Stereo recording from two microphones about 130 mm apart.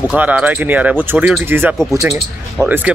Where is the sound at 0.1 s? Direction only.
10° right (ahead or behind).